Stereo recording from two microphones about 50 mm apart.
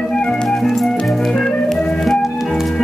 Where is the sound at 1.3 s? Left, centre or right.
Centre.